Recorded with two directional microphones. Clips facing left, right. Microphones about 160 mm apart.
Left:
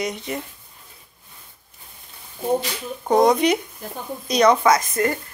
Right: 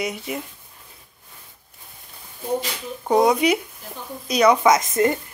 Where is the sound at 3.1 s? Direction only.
10° right (ahead or behind).